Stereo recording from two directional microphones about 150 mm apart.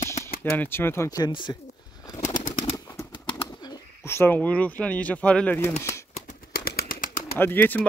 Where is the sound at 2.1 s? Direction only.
55° left (ahead or behind).